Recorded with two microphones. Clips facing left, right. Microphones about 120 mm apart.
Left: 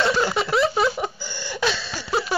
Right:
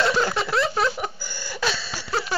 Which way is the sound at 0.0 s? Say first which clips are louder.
Left 1 dB; 5° left (ahead or behind).